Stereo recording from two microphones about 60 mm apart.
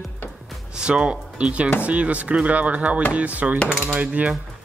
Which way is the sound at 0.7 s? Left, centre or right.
Centre.